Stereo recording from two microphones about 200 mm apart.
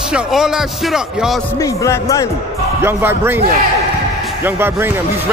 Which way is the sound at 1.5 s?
15° left (ahead or behind).